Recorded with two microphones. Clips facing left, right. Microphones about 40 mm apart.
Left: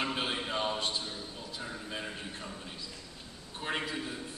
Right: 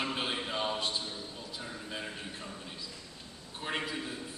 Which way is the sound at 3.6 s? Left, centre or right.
Centre.